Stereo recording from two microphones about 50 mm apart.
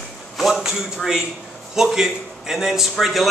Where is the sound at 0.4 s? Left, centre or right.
Centre.